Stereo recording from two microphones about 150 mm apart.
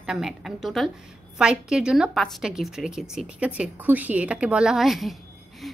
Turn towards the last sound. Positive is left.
turn(degrees=0)  # may be behind; listen again after turning